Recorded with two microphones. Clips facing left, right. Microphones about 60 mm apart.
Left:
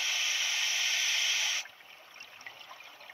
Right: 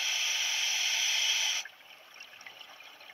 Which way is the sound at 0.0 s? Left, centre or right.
Left.